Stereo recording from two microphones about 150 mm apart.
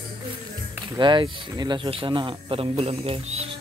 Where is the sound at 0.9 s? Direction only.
30° right (ahead or behind).